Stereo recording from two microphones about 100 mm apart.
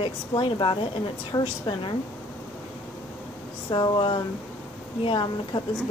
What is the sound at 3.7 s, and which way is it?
A woman's voice, 50° left (ahead or behind).